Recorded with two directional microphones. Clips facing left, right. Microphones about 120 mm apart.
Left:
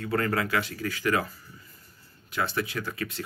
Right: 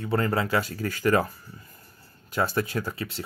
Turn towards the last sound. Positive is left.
turn(degrees=-30)  # may be behind; listen again after turning